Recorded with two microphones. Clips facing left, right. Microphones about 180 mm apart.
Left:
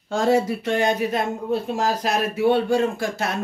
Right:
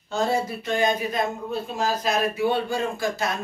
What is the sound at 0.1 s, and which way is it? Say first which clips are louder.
Speech: left 5 dB; 90° left.